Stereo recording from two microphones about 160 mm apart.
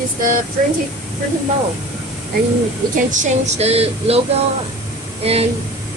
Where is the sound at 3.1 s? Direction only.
50° right (ahead or behind).